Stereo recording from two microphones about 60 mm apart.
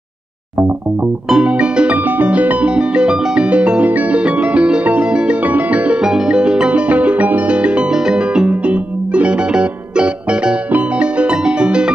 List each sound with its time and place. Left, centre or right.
1.5 s music: right
6.0 s music: centre